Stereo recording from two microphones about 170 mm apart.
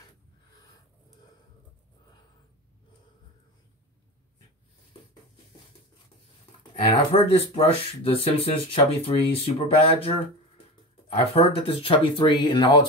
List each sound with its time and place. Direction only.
6.7 s speech: 35° left (ahead or behind)
11.1 s speech: 30° left (ahead or behind)